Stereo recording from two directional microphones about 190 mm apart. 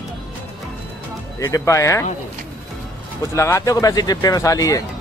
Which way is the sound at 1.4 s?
15° left (ahead or behind).